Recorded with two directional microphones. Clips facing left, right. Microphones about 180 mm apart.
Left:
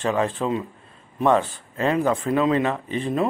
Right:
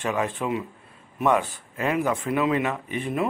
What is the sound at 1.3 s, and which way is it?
Speech, 15° right (ahead or behind).